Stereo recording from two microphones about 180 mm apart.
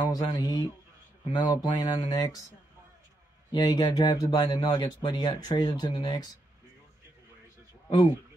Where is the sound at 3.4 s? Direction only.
20° left (ahead or behind).